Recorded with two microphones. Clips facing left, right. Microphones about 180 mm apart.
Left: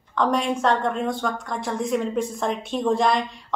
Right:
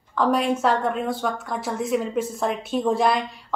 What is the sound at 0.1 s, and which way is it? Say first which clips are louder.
A woman's voice: right 1 dB; 5° right (ahead or behind).